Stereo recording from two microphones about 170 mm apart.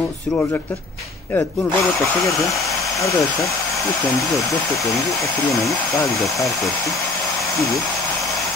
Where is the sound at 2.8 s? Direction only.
20° left (ahead or behind).